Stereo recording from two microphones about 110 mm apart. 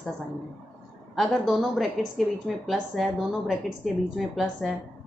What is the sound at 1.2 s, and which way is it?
A woman's voice, centre (ahead or behind).